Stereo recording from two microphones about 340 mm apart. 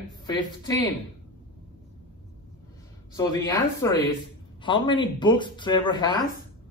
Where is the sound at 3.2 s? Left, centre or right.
Centre.